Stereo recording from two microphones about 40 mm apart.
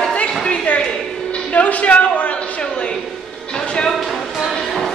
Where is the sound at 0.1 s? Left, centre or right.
Left.